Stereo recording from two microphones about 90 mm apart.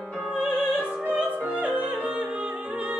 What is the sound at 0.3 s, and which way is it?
Music, 15° right (ahead or behind).